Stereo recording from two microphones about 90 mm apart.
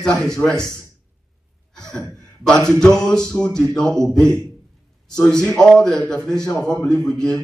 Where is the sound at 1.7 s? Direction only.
10° left (ahead or behind).